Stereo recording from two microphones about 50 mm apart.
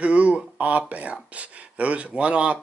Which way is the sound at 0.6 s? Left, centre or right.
Right.